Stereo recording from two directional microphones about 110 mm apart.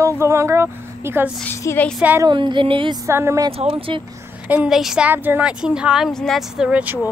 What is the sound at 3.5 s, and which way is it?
Speech, 60° right (ahead or behind).